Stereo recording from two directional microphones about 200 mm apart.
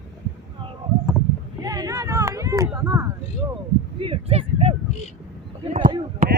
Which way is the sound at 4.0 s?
30° right (ahead or behind).